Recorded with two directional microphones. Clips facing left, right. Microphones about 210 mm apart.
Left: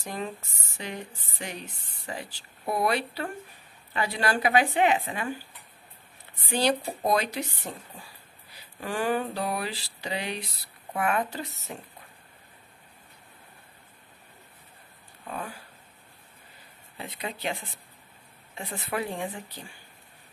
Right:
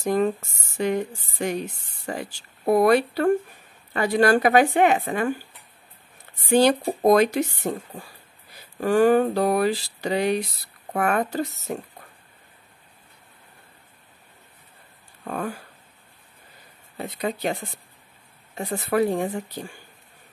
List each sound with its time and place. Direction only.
0.0 s speech: 45° right (ahead or behind)
6.5 s speech: 50° right (ahead or behind)
15.3 s speech: 50° right (ahead or behind)
16.9 s speech: 40° right (ahead or behind)